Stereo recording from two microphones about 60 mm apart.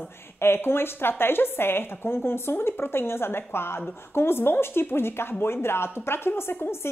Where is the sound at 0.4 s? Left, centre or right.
Left.